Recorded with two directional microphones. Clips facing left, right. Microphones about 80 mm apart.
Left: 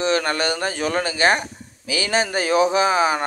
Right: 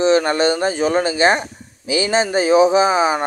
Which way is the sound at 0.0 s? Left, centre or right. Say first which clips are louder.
Right 6 dB; right.